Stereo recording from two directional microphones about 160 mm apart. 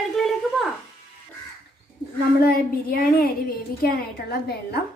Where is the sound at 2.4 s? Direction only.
70° left (ahead or behind).